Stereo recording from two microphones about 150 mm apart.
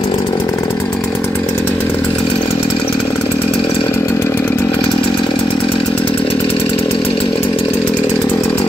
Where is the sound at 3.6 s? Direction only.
35° left (ahead or behind).